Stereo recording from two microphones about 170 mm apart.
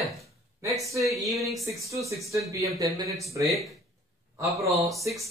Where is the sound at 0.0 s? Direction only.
Centre (ahead or behind).